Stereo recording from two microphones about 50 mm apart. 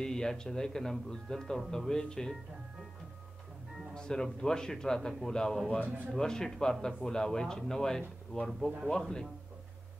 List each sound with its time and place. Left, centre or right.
0.0 s a man's voice: centre
3.9 s a man's voice: centre